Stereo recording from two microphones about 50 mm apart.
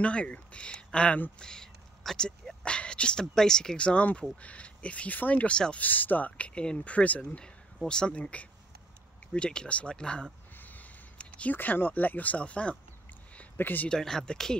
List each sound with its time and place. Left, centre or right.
0.0 s speech: left
10.5 s a sound: left
11.1 s a sound: left
11.5 s speech: left
13.6 s speech: left
13.8 s speech: centre